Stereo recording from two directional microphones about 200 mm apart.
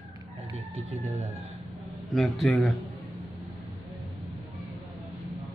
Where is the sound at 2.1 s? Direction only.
Centre (ahead or behind).